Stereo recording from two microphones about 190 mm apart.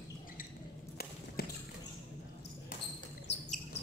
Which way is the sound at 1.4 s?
55° left (ahead or behind).